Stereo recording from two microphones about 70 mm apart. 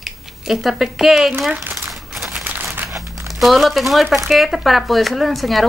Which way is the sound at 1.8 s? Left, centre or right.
Centre.